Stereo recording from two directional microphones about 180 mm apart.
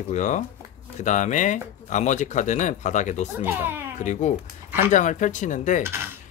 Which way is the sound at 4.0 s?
40° left (ahead or behind).